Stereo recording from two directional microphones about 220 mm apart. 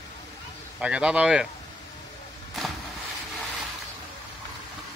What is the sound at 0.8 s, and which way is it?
Speech, 5° right (ahead or behind).